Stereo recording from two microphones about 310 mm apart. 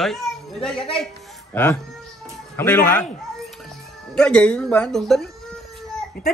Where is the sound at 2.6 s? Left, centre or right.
Centre.